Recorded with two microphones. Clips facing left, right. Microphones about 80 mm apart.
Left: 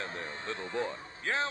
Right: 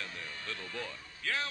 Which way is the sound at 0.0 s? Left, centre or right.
Left.